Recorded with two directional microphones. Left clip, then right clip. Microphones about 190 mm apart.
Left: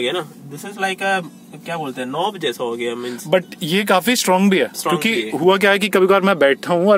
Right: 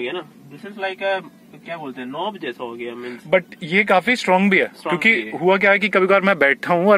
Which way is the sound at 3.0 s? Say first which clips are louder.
Right 1 dB; 15° left (ahead or behind).